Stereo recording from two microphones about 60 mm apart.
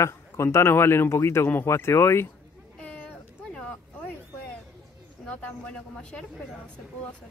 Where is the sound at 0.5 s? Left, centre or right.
Left.